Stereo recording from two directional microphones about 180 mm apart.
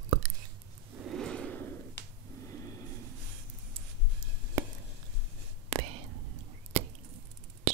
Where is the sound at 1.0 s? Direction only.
Centre (ahead or behind).